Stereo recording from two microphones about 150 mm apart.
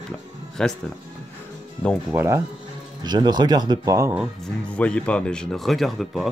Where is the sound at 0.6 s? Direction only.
5° left (ahead or behind).